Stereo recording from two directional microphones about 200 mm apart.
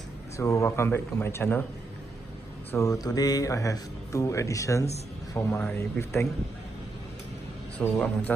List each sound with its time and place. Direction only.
0.4 s a man's voice: 15° left (ahead or behind)
2.7 s a man's voice: 15° left (ahead or behind)
7.8 s a man's voice: 10° left (ahead or behind)